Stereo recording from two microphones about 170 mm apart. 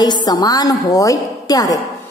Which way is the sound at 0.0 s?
25° left (ahead or behind).